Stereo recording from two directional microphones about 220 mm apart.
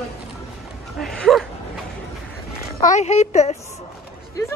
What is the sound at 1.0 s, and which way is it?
Speech, centre (ahead or behind).